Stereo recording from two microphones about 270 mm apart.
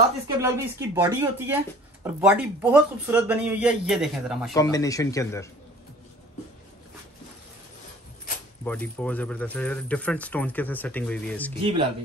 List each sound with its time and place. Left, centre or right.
0.4 s speech: centre
4.6 s speech: centre
8.6 s speech: centre
11.6 s speech: centre